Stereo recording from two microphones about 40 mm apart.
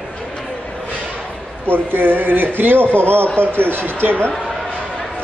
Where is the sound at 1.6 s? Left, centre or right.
Right.